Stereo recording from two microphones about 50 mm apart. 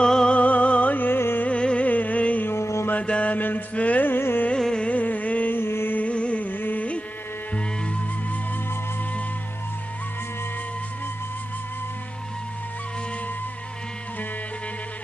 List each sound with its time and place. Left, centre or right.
0.0 s music: centre
0.4 s music: left
1.4 s music: left
1.9 s music: left
2.4 s music: left
2.9 s mantra: left
4.1 s carnatic music: left
4.6 s a sound: centre
4.8 s a sound: left
5.6 s carnatic music: left
5.9 s carnatic music: left
7.5 s music: left